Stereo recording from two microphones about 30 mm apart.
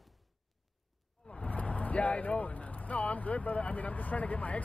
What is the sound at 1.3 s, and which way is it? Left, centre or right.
A woman's voice, left.